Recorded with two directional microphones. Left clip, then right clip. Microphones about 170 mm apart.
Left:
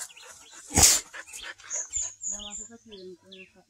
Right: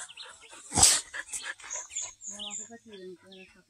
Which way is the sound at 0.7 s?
40° left (ahead or behind).